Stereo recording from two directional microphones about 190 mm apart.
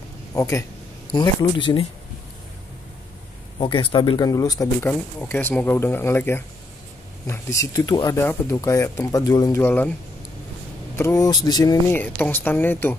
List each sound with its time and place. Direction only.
0.3 s speech: 15° left (ahead or behind)
3.5 s speech: 25° left (ahead or behind); by 9.8 s 10° left (ahead or behind)
11.0 s speech: 15° left (ahead or behind)